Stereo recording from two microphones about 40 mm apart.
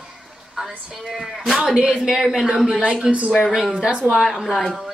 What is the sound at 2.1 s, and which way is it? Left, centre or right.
Speech, centre.